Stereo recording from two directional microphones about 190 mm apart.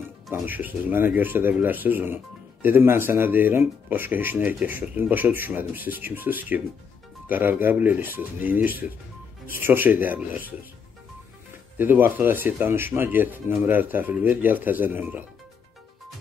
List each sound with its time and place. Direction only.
0.3 s speech: 10° right (ahead or behind)
11.8 s speech: 10° right (ahead or behind)